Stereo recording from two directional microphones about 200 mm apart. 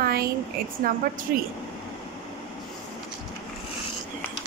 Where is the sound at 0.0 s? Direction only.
50° right (ahead or behind).